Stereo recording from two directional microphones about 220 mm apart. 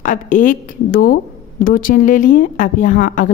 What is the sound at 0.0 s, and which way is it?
Speech, 35° left (ahead or behind).